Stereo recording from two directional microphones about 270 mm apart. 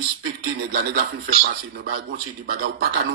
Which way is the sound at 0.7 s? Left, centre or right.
Right.